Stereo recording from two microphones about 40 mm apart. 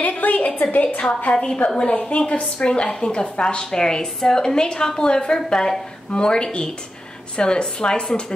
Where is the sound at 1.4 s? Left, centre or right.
Left.